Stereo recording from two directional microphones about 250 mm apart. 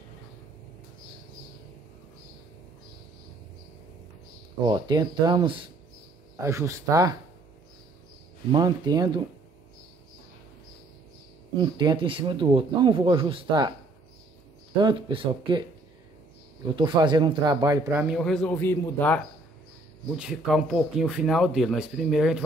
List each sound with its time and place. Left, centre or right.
4.6 s speech: centre
8.5 s speech: centre
11.5 s speech: centre
14.8 s speech: centre
16.7 s speech: centre